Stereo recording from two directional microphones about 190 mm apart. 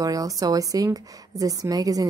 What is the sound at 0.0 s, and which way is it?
A woman's voice, 20° right (ahead or behind).